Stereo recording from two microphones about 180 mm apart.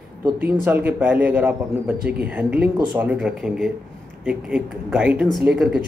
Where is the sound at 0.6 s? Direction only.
10° right (ahead or behind).